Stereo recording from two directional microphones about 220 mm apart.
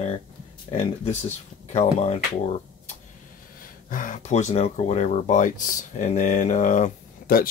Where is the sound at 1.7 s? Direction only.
30° left (ahead or behind).